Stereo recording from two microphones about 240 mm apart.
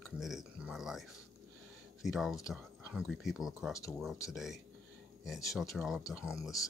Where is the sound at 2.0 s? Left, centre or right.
Centre.